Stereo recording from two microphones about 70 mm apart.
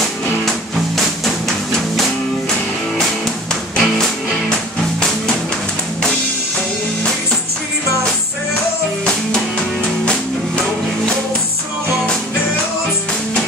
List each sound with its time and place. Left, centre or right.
0.5 s music: centre
3.7 s music: centre